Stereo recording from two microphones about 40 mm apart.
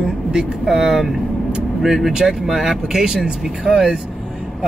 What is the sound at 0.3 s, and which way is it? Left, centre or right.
Speech, centre.